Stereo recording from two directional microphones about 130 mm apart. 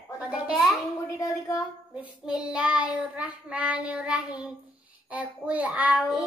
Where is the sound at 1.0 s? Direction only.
25° left (ahead or behind).